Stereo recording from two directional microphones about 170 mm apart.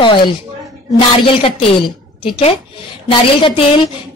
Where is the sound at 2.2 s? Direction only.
35° left (ahead or behind).